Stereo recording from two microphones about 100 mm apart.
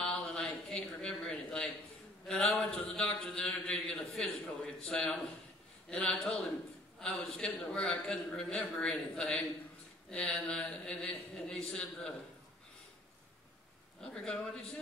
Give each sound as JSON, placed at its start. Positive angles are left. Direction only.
{"t": 0.0, "sound": "a sound", "side_deg": 5}
{"t": 2.2, "sound": "a man's voice", "side_deg": 5}
{"t": 14.0, "sound": "a man's voice", "side_deg": 10}